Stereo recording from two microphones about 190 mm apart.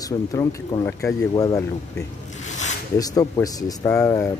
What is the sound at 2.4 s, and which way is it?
Zipper, 40° left (ahead or behind).